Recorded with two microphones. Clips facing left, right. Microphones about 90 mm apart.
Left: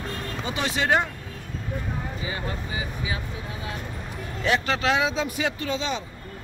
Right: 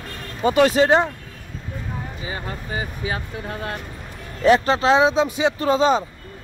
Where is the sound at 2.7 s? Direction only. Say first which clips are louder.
Right 4 dB; 45° right (ahead or behind).